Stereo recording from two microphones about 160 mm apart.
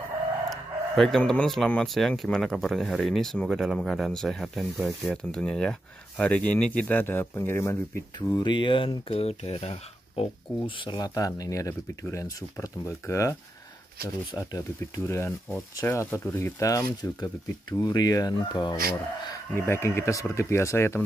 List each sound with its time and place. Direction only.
0.5 s speech: centre (ahead or behind); by 10.2 s 40° left (ahead or behind)
10.8 s speech: 25° left (ahead or behind)
19.5 s speech: 15° left (ahead or behind)